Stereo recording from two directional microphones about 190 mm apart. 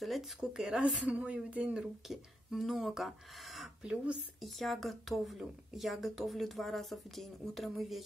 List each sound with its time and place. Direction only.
0.0 s speech: centre (ahead or behind)